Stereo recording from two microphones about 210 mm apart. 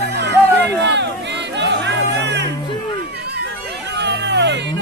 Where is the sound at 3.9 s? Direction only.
55° right (ahead or behind).